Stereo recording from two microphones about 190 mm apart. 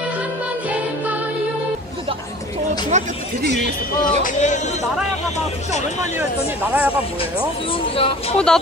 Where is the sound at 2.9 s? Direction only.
40° right (ahead or behind).